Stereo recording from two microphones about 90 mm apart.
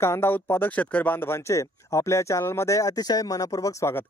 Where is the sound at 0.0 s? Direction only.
25° left (ahead or behind).